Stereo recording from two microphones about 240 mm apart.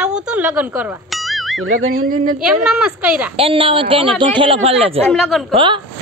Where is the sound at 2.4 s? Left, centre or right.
Centre.